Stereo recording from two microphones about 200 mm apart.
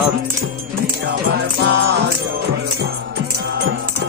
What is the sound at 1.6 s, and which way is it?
Music, 55° right (ahead or behind).